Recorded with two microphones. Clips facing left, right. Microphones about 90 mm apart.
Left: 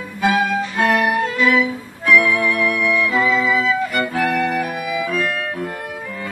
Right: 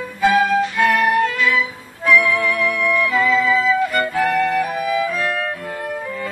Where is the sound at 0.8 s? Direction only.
35° left (ahead or behind).